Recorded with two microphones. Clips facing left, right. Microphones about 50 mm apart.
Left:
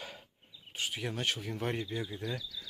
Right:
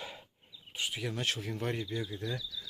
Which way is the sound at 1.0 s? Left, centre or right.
Centre.